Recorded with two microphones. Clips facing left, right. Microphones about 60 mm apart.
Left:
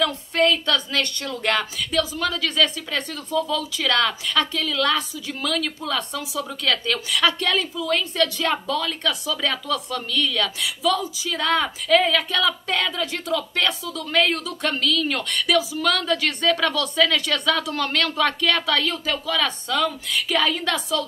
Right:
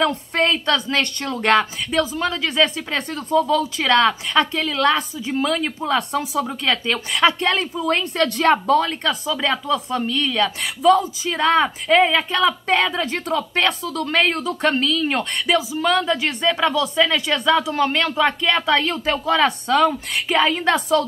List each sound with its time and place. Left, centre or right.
0.0 s speech: right
7.7 s speech: right